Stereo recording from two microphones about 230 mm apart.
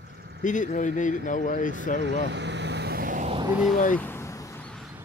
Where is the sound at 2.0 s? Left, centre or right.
Right.